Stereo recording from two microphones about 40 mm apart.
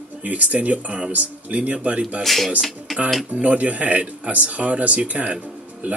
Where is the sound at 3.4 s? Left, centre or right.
Right.